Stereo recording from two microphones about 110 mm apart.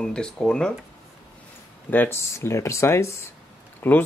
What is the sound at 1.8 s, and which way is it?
Speech, 15° left (ahead or behind).